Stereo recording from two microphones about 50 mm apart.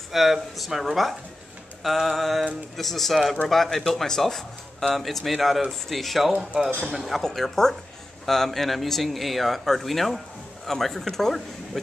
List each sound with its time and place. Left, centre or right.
0.1 s speech: centre